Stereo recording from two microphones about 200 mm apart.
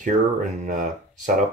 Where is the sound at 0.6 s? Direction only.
40° right (ahead or behind).